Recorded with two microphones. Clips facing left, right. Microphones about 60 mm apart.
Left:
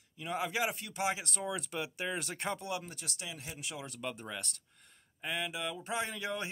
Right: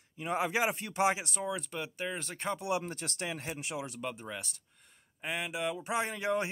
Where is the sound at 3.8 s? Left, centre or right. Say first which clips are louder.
Right 3 dB; centre.